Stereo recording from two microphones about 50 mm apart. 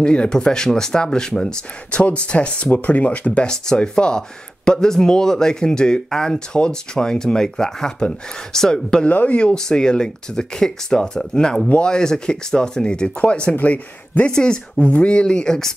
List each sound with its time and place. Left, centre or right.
0.0 s speech: centre
3.4 s speech: centre
9.0 s speech: left
14.3 s speech: centre
14.8 s speech: left